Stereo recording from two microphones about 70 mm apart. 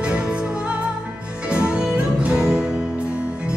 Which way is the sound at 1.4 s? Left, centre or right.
Centre.